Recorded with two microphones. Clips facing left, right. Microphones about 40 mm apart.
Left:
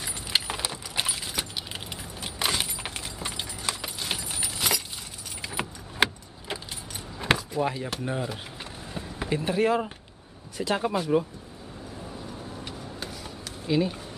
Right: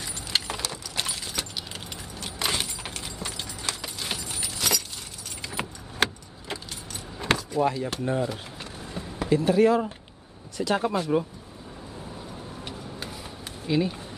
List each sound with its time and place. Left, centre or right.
0.3 s keys jangling: centre
5.4 s vehicle: centre
7.2 s speech: centre
9.2 s speech: left
10.8 s speech: centre
13.0 s a sound: centre